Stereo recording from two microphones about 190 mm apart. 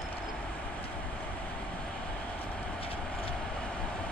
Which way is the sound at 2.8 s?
30° left (ahead or behind).